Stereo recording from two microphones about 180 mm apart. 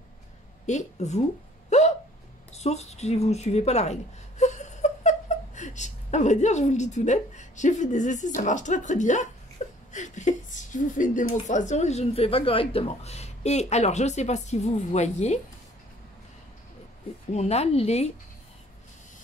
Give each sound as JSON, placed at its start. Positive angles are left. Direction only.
{"t": 0.7, "sound": "a woman's voice", "side_deg": 40}
{"t": 1.7, "sound": "hiccup", "side_deg": 40}
{"t": 2.5, "sound": "speech", "side_deg": 40}
{"t": 9.6, "sound": "whimper", "side_deg": 45}
{"t": 9.9, "sound": "a woman's voice", "side_deg": 40}
{"t": 17.3, "sound": "a woman's voice", "side_deg": 35}